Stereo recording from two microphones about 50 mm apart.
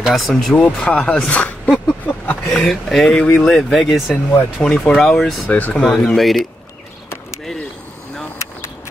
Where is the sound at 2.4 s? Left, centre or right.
Centre.